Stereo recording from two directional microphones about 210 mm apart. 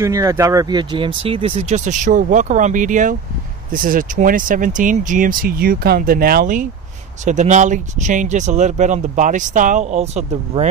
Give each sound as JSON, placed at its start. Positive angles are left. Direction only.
{"t": 0.0, "sound": "speech", "side_deg": -15}